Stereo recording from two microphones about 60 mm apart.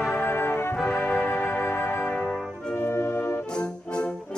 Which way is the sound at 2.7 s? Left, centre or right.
Left.